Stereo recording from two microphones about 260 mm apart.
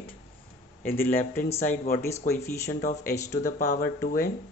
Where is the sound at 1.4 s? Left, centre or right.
Left.